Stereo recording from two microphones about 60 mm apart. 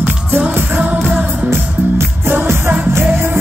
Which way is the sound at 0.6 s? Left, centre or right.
Right.